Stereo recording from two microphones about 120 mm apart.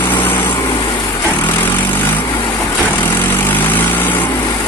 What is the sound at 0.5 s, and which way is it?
Vehicle, 40° left (ahead or behind).